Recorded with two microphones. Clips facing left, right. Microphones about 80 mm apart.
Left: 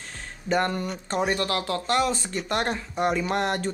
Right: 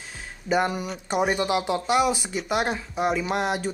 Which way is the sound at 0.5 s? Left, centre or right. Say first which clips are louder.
Right 1 dB; centre.